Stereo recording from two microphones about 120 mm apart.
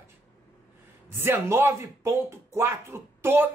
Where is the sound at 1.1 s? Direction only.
20° right (ahead or behind).